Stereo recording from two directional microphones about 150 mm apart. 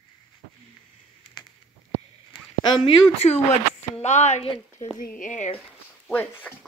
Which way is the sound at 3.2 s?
45° left (ahead or behind).